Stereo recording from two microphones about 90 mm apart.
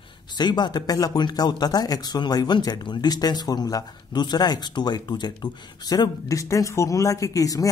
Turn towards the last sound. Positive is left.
turn(degrees=40)  # may be behind; listen again after turning